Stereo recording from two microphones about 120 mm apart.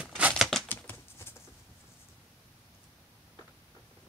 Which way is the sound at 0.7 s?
15° left (ahead or behind).